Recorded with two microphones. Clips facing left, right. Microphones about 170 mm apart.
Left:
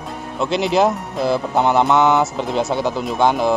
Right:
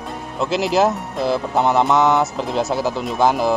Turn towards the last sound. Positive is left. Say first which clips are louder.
# left 1 dB
turn(degrees=0)  # may be behind; listen again after turning